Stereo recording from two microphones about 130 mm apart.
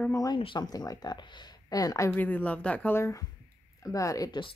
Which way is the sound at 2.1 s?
15° left (ahead or behind).